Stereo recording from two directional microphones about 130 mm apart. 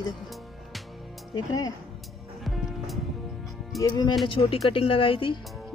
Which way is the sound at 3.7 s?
30° left (ahead or behind).